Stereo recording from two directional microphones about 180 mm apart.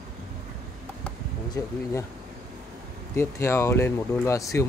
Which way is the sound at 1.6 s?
15° left (ahead or behind).